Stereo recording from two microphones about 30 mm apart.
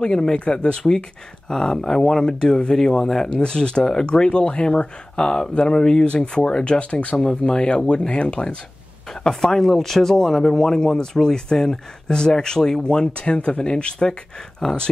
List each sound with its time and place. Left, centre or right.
0.0 s speech: left
1.5 s speech: left
3.3 s speech: left
6.6 s speech: left
7.2 s speech: left
9.3 s speech: centre
9.7 s speech: centre; by 14.1 s left
14.6 s speech: centre